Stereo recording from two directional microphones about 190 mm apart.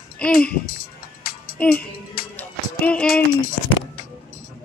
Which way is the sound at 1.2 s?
50° left (ahead or behind).